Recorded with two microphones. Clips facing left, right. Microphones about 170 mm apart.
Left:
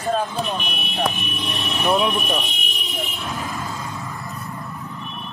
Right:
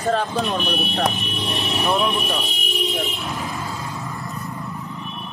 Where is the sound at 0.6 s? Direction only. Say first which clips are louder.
Right 3 dB; 30° right (ahead or behind).